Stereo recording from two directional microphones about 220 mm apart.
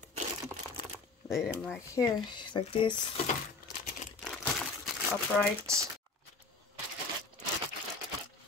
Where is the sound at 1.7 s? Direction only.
15° left (ahead or behind).